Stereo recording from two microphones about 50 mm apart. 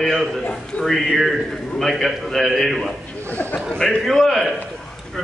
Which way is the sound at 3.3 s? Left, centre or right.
Left.